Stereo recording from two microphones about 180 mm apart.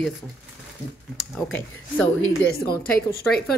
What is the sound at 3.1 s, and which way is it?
Speech, 60° left (ahead or behind).